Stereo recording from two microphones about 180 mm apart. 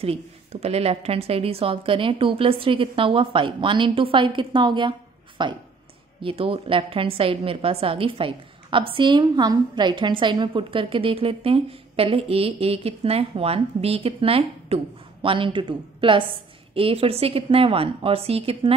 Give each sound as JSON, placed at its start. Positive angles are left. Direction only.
{"t": 0.0, "sound": "a woman's voice", "side_deg": -35}